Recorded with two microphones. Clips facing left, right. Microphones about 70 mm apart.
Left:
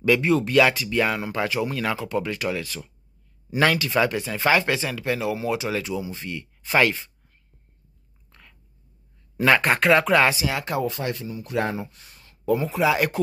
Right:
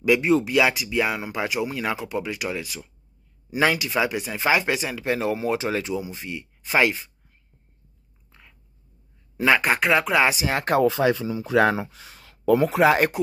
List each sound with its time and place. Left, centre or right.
0.0 s speech: centre
8.3 s chewing: centre
9.4 s speech: centre
10.3 s speech: right
11.0 s speech: right
11.3 s speech: right